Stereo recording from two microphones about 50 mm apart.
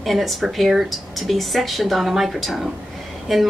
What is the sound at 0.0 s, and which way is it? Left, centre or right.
A woman's voice, centre.